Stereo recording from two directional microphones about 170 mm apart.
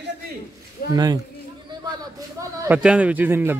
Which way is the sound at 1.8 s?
20° right (ahead or behind).